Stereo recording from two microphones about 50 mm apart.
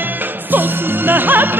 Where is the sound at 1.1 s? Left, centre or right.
Right.